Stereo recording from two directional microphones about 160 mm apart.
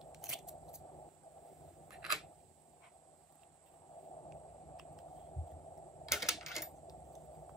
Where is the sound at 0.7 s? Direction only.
20° left (ahead or behind).